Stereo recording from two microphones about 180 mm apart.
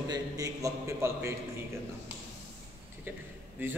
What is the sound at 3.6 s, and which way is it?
Speech, 10° right (ahead or behind).